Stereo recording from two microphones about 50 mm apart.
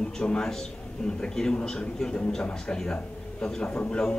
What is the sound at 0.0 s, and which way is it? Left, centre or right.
A man's voice, centre.